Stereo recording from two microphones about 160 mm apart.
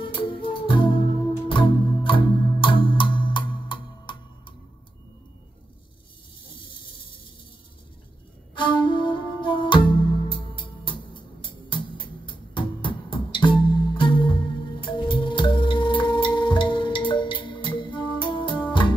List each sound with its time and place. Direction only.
0.0 s music: 30° left (ahead or behind)
8.5 s music: 30° left (ahead or behind)